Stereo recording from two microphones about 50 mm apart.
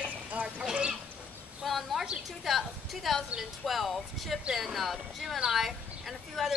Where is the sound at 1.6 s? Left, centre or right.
Centre.